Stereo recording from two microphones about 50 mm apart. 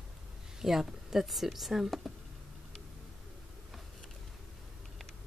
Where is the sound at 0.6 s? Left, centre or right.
Centre.